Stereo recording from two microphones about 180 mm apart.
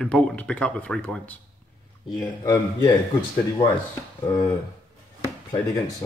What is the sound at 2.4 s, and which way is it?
Speech, 15° left (ahead or behind).